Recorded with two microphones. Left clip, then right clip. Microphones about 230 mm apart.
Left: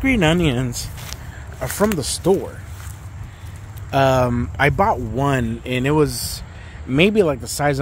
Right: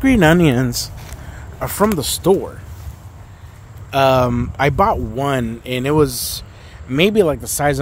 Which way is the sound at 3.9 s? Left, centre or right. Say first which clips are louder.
Right 3 dB; centre.